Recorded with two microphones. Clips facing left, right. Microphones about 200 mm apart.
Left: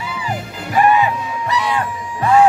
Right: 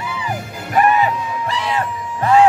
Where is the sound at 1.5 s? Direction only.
25° right (ahead or behind).